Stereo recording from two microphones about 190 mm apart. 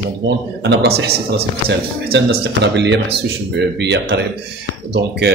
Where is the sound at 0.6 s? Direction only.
60° right (ahead or behind).